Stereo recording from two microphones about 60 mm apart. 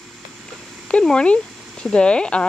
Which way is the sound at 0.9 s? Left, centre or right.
Centre.